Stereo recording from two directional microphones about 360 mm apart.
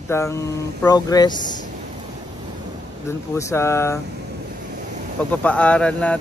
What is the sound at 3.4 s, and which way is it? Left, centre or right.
Speech, centre.